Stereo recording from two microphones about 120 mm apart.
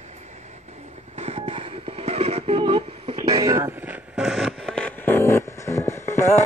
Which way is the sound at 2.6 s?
50° right (ahead or behind).